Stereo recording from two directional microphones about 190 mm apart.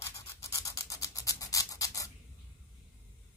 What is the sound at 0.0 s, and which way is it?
Scratch, 15° left (ahead or behind).